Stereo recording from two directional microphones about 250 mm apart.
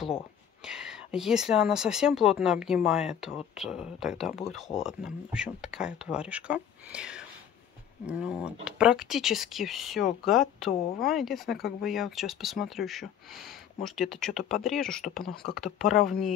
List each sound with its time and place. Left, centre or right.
0.7 s speech: centre
10.7 s speech: left
11.1 s speech: centre